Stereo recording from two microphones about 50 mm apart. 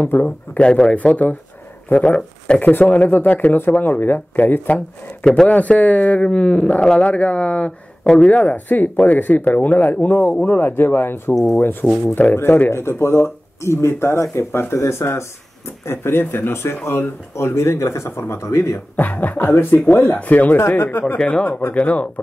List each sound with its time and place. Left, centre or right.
0.0 s speech: left
0.6 s speech: centre; by 9.9 s left
10.2 s speech: centre
10.5 s speech: left
11.3 s speech: centre
12.4 s speech: left
18.9 s speech: left
19.5 s speech: left
20.2 s speech: left
20.5 s speech: left
21.2 s speech: centre
21.5 s speech: left
21.7 s speech: left